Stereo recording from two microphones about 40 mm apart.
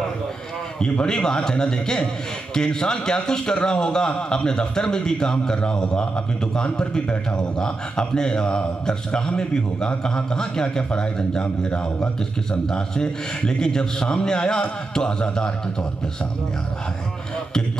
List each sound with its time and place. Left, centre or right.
0.7 s a man's voice: left